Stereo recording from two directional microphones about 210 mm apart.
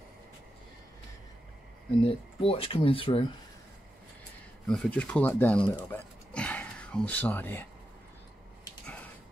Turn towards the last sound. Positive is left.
turn(degrees=10)  # may be behind; listen again after turning